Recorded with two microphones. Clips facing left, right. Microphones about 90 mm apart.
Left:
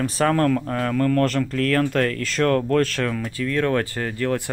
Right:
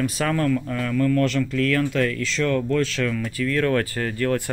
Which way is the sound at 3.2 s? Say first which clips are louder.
Right 1 dB; 25° left (ahead or behind).